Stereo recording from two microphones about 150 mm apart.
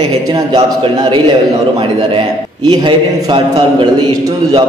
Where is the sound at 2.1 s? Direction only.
30° right (ahead or behind).